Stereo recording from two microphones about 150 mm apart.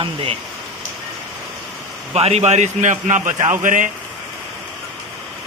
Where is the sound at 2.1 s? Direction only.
45° right (ahead or behind).